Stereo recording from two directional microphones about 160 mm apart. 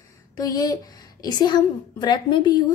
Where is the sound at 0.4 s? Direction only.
25° left (ahead or behind).